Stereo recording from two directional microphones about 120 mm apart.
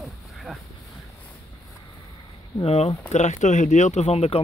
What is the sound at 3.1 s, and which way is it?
Speech, 80° left.